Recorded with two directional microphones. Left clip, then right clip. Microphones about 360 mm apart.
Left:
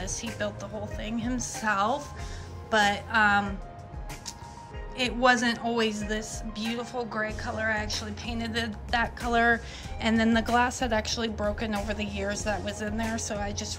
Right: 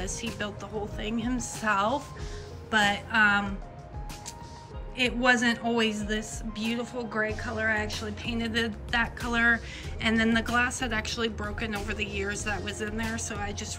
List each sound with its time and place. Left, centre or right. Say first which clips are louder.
0.0 s speech: left 1 dB; centre
4.9 s speech: left 1 dB; centre